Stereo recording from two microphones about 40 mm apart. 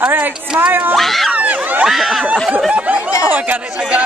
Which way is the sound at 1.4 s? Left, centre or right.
Right.